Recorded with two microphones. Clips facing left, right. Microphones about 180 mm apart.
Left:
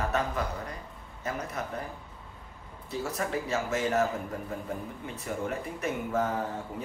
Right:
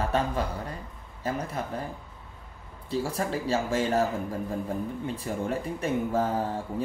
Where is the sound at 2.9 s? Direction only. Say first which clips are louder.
Right 3 dB; 30° right (ahead or behind).